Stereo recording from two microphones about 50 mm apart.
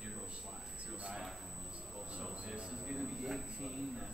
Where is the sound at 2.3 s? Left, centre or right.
Centre.